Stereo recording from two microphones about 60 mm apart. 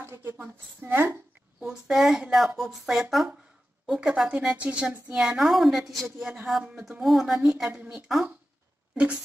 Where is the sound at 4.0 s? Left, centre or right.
Centre.